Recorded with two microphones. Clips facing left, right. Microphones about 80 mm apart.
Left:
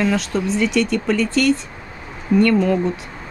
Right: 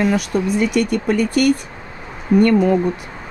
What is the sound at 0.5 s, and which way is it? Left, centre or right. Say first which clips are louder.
Speech: even; left.